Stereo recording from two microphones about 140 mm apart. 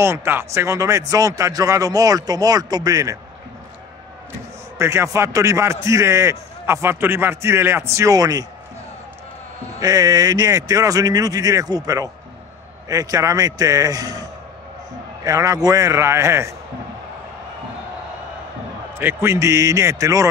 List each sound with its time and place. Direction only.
0.0 s a man's voice: 20° right (ahead or behind)
4.7 s a man's voice: 20° right (ahead or behind)
9.8 s a man's voice: 25° right (ahead or behind)
15.2 s a man's voice: 25° right (ahead or behind)
18.9 s a man's voice: 15° right (ahead or behind)